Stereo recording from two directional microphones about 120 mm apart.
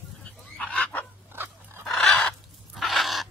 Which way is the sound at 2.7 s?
Centre (ahead or behind).